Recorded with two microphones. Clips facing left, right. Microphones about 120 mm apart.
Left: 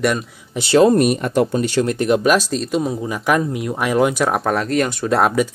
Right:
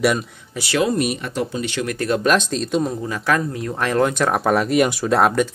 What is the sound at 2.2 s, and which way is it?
Speech, 5° left (ahead or behind).